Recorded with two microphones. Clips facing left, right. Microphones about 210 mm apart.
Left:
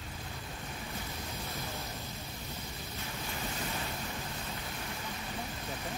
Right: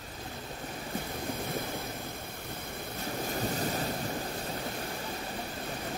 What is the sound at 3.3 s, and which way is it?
Thunder, 45° right (ahead or behind).